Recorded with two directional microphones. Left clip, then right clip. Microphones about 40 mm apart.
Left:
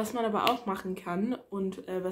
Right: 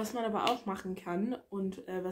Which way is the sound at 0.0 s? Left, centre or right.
Centre.